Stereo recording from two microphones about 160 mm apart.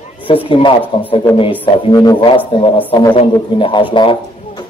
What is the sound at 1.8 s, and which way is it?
Speech, 25° left (ahead or behind).